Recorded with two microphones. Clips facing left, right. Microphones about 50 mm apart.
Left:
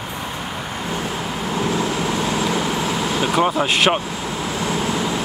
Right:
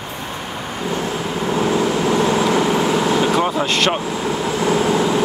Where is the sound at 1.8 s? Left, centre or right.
Right.